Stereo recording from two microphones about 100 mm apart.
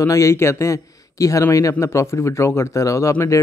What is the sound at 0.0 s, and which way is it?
A man's voice, 30° left (ahead or behind).